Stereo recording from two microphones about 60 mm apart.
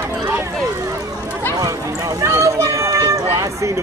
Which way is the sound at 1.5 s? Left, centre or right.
Right.